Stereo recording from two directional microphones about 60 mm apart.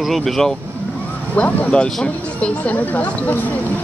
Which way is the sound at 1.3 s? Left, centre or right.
Centre.